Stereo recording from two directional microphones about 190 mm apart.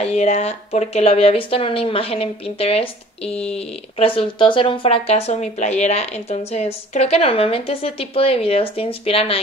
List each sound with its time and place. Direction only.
0.0 s speech: 35° left (ahead or behind)